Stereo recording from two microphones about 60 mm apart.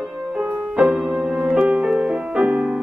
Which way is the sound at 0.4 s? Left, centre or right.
Centre.